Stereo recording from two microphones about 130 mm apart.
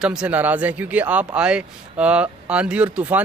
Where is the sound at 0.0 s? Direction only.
10° right (ahead or behind).